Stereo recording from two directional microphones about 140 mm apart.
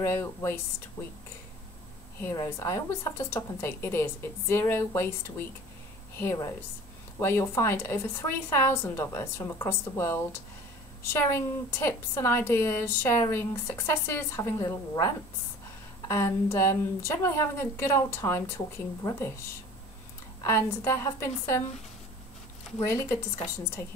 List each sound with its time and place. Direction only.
0.0 s a woman's voice: 20° left (ahead or behind)
2.2 s a woman's voice: 20° left (ahead or behind)
6.1 s a woman's voice: 20° left (ahead or behind)
20.4 s a woman's voice: 20° left (ahead or behind)